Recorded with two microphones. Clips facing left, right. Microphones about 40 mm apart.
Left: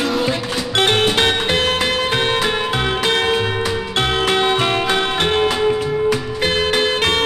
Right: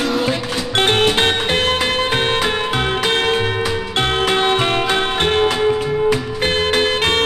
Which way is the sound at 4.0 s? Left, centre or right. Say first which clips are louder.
Even; right.